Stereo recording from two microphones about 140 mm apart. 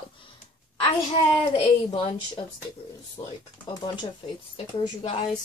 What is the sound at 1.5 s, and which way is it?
Speech, 30° left (ahead or behind).